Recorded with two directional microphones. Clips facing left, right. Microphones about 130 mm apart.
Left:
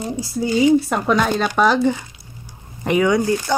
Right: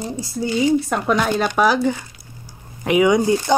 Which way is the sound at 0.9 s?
Centre (ahead or behind).